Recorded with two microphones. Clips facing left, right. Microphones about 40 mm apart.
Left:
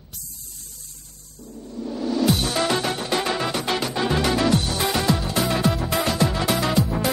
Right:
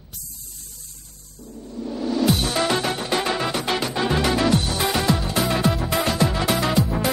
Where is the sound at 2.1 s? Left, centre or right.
Centre.